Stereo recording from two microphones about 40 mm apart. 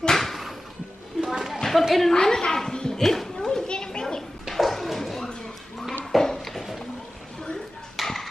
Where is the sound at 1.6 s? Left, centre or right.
Centre.